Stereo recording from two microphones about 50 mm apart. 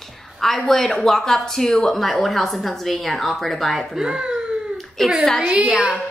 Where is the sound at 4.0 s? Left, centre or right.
Centre.